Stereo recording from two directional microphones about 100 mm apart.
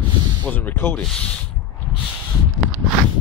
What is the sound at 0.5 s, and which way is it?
Speech, 15° left (ahead or behind).